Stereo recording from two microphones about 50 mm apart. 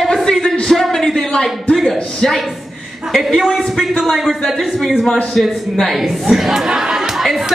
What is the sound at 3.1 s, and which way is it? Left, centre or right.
A man's voice, centre.